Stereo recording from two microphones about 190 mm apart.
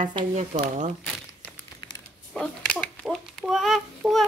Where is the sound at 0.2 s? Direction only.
35° right (ahead or behind).